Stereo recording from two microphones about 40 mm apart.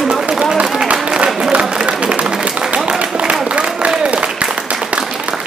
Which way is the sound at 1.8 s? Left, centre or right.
Right.